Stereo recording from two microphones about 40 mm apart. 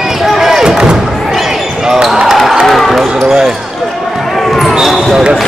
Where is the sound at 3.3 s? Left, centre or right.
Centre.